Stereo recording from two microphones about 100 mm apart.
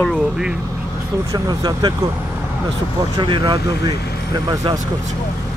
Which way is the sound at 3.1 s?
50° right (ahead or behind).